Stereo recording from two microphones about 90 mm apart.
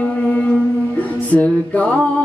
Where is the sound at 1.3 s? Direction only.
15° left (ahead or behind).